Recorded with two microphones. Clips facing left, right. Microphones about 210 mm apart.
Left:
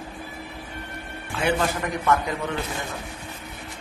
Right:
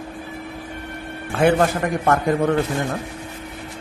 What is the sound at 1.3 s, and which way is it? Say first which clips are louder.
A man's voice: right 7 dB; 55° right (ahead or behind).